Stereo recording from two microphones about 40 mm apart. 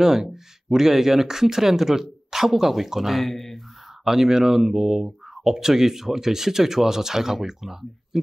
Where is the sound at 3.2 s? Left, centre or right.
Centre.